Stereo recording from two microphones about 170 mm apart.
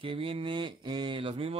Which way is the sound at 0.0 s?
30° right (ahead or behind).